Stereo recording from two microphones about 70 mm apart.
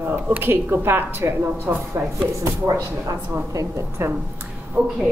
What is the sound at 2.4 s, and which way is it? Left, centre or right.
A woman's voice, right.